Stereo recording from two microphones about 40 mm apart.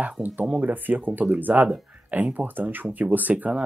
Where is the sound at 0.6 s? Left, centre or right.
Right.